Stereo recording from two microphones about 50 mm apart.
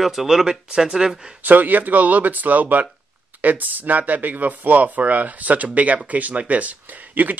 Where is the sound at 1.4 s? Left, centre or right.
Right.